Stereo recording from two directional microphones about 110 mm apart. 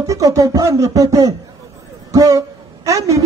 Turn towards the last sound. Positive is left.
turn(degrees=-30)  # may be behind; listen again after turning